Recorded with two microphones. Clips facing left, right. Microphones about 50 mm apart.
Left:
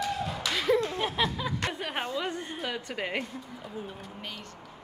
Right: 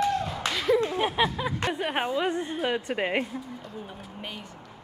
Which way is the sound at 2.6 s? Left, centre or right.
Right.